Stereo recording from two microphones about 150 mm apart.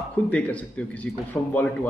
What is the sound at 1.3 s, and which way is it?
Speech, 20° left (ahead or behind).